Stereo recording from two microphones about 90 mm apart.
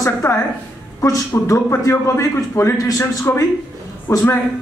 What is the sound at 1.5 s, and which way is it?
A man's voice, 35° left (ahead or behind).